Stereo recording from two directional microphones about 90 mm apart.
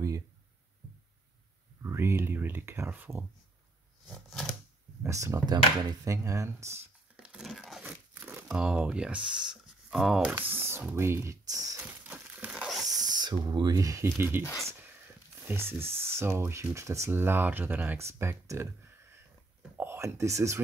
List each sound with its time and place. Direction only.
1.8 s speech: 30° right (ahead or behind)
4.1 s a sound: centre (ahead or behind)
5.0 s speech: 35° right (ahead or behind)
7.2 s a sound: 10° right (ahead or behind)
7.8 s crumpling: 15° right (ahead or behind)
10.4 s speech: 25° right (ahead or behind)
11.4 s speech: 40° right (ahead or behind)
11.8 s crushing: 20° right (ahead or behind)
12.8 s speech: 45° right (ahead or behind); by 14.4 s 25° right (ahead or behind)
14.4 s speech: 30° left (ahead or behind)
15.4 s speech: 25° right (ahead or behind)
17.9 s speech: 30° right (ahead or behind)
19.8 s speech: 30° right (ahead or behind)